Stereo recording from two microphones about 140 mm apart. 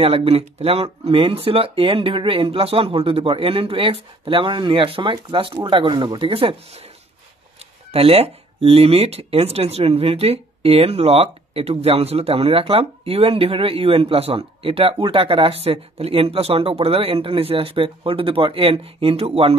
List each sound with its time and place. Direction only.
0.0 s speech: 45° right (ahead or behind)
7.9 s speech: 45° right (ahead or behind)